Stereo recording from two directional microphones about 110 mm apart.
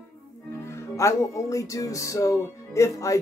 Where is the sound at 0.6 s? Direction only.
25° left (ahead or behind).